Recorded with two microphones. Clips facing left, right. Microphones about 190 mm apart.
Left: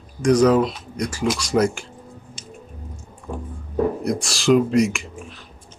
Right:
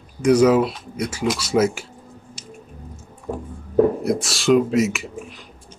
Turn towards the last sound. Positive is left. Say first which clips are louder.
# right 2 dB
turn(degrees=-5)  # may be behind; listen again after turning